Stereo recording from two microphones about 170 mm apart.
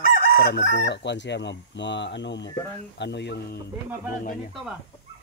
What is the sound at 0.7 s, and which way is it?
Speech, 85° left.